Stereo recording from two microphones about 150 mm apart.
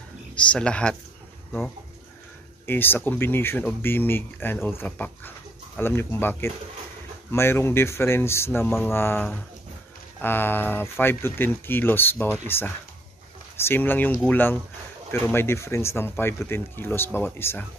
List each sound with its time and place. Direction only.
0.4 s speech: 5° left (ahead or behind)
2.6 s speech: 15° left (ahead or behind)